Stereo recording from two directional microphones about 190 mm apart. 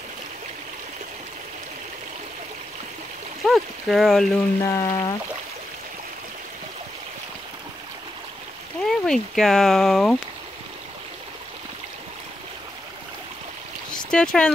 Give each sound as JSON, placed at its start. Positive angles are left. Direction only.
{"t": 3.4, "sound": "speech", "side_deg": 0}
{"t": 4.6, "sound": "a sound", "side_deg": 15}
{"t": 8.8, "sound": "speech", "side_deg": 0}
{"t": 14.1, "sound": "speech", "side_deg": 5}